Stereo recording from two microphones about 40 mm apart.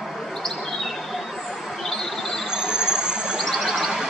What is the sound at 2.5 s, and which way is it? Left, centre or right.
Train, centre.